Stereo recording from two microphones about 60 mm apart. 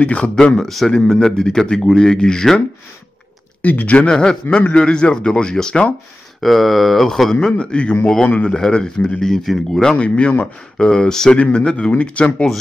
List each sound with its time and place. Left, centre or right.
0.0 s speech: centre
0.7 s speech: centre
3.6 s a man's voice: left
4.1 s speech: centre
6.4 s a man's voice: centre
9.8 s a man's voice: centre